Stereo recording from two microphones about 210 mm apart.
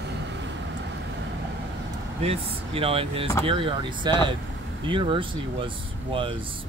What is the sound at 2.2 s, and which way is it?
Speech, 25° right (ahead or behind).